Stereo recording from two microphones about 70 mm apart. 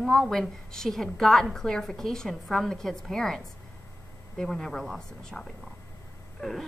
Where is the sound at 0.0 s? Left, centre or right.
Centre.